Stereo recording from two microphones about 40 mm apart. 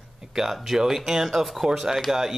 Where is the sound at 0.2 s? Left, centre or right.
Centre.